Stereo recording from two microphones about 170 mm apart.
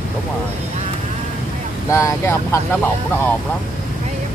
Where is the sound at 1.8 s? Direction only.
15° left (ahead or behind).